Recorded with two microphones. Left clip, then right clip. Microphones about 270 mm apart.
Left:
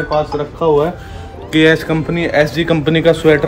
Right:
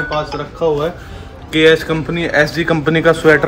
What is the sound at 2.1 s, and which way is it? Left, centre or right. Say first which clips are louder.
A man's voice: even; centre.